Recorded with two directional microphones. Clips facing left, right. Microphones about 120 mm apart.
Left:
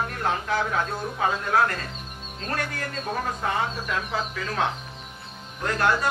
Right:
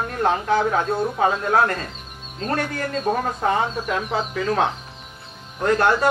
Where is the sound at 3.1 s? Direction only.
35° right (ahead or behind).